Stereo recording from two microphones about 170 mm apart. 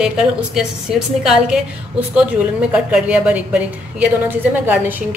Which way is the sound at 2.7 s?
10° right (ahead or behind).